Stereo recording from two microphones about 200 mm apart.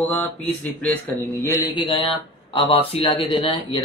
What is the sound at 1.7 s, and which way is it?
A man's voice, 25° left (ahead or behind).